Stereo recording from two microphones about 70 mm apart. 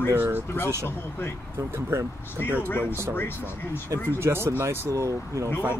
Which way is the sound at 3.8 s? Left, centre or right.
Right.